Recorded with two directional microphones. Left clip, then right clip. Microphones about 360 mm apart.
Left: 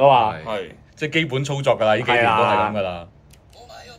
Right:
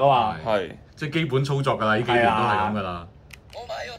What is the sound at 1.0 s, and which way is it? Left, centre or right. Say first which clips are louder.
Speech: left 3 dB; centre.